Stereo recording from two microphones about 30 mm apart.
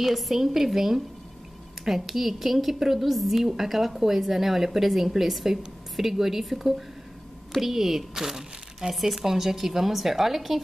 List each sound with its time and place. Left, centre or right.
0.0 s a woman's voice: centre